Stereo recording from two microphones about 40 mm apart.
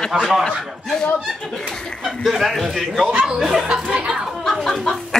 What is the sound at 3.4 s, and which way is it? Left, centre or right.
Speech, centre.